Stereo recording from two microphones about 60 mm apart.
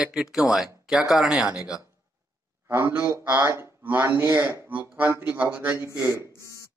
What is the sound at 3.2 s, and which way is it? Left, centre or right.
Speech, right.